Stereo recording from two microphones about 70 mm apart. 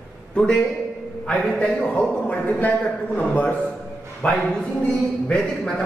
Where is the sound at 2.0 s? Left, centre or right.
Left.